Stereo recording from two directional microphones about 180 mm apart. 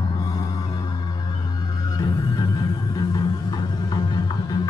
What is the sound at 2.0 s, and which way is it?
Music, 20° left (ahead or behind).